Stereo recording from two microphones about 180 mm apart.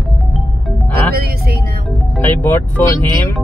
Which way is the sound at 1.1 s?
60° right (ahead or behind).